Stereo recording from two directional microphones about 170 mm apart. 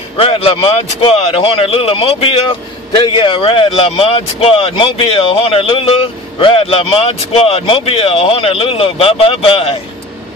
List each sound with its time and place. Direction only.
0.2 s speech: 35° left (ahead or behind)